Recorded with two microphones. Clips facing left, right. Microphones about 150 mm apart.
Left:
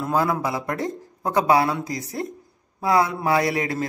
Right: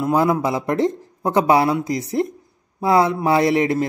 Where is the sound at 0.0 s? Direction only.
20° right (ahead or behind).